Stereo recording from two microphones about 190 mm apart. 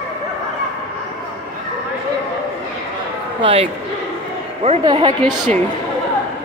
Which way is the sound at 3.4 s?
30° right (ahead or behind).